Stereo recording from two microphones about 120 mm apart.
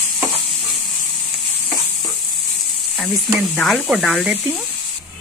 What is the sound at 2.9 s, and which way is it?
Speech, centre (ahead or behind).